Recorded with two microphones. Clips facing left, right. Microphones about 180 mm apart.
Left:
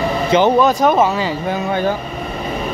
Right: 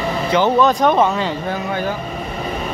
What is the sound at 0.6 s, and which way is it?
Speech, 5° left (ahead or behind).